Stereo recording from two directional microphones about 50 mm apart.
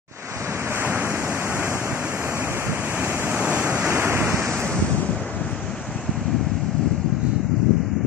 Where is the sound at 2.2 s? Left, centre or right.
Right.